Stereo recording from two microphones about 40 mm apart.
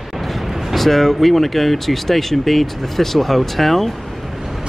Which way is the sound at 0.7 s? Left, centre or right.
Centre.